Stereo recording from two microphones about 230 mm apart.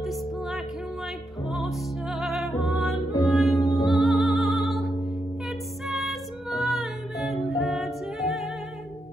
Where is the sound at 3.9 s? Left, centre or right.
Centre.